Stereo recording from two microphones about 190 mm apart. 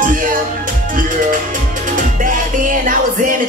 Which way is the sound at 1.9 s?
45° right (ahead or behind).